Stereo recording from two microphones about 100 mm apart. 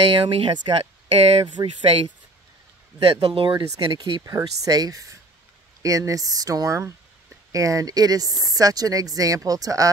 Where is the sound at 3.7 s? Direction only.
40° right (ahead or behind).